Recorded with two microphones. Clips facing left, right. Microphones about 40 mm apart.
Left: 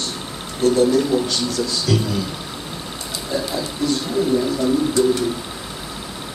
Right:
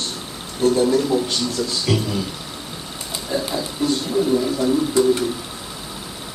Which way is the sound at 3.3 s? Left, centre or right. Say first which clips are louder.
Even; right.